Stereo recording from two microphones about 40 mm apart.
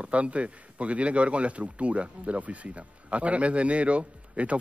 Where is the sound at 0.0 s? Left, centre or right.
Right.